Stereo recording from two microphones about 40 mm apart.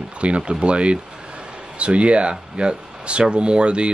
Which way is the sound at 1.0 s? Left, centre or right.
Centre.